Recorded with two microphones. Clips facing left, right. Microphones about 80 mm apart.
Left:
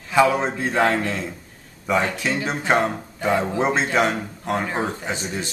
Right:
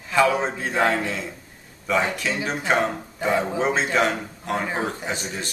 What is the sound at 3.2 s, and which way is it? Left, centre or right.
Speech, centre.